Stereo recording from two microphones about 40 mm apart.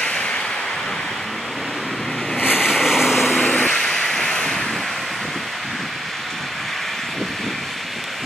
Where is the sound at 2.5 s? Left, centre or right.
Centre.